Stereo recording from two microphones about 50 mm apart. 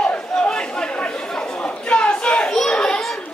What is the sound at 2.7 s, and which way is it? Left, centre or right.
Children playing, centre.